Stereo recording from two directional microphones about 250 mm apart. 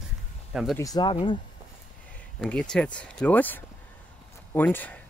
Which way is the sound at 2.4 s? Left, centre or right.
Centre.